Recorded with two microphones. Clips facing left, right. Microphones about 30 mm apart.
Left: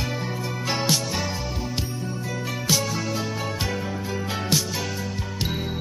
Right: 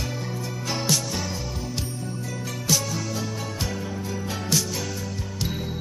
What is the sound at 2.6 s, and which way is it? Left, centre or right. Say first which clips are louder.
Music: left 1 dB; left.